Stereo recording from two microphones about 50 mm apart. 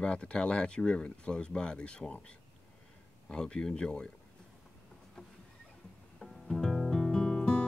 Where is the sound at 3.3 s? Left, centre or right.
Centre.